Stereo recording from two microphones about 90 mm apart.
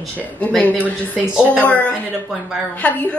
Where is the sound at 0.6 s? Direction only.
15° left (ahead or behind).